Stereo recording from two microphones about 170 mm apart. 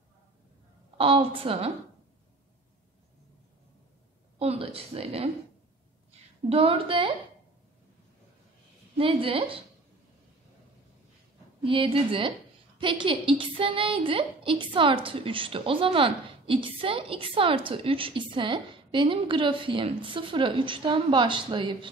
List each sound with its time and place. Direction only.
0.9 s a woman's voice: 35° right (ahead or behind)
4.4 s a woman's voice: 35° right (ahead or behind)
6.5 s a woman's voice: 30° right (ahead or behind)
8.9 s a woman's voice: 30° right (ahead or behind)
11.6 s a woman's voice: 30° right (ahead or behind)